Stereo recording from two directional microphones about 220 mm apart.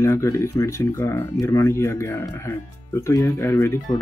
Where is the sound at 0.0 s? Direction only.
10° left (ahead or behind).